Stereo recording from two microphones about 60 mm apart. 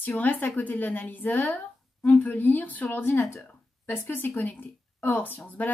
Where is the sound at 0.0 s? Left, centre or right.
Left.